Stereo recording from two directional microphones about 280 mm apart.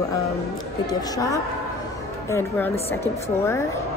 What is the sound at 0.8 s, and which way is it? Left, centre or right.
Speech, centre.